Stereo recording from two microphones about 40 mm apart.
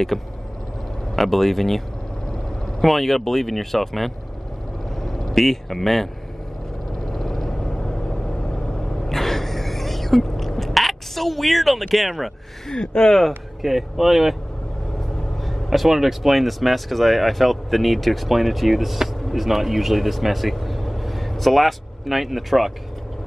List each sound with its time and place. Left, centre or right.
0.1 s speech: centre
2.8 s speech: centre
7.1 s vehicle: centre
9.1 s a sound: centre
11.9 s speech: centre
12.6 s speech: left
13.6 s speech: centre
15.4 s speech: centre